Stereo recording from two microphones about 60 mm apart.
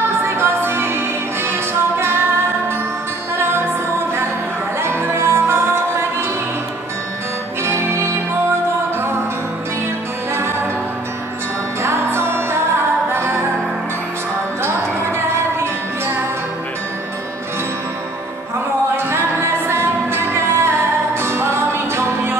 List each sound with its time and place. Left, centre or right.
0.2 s music: right
3.3 s music: right
4.7 s music: right
7.6 s music: right
11.8 s music: right
14.6 s music: right
18.9 s a capella: right
19.7 s music: right